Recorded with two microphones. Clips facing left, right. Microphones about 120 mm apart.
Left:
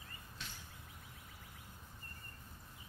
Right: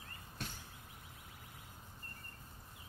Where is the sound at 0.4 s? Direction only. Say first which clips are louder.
Right 6 dB; 50° right (ahead or behind).